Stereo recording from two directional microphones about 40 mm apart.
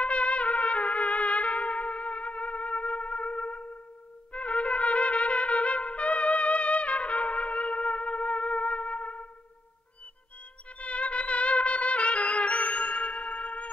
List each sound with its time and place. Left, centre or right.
0.0 s trumpet: left
10.8 s music: left